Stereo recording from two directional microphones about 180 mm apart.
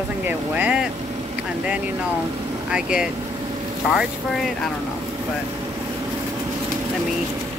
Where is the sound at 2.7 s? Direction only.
5° right (ahead or behind).